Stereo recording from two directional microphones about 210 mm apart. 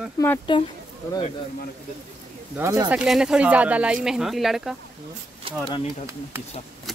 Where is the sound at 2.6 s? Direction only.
15° right (ahead or behind).